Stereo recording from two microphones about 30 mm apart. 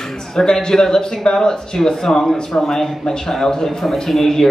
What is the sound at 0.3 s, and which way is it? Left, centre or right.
A man's voice, left.